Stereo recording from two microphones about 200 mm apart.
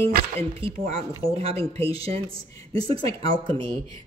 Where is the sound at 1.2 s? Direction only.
30° right (ahead or behind).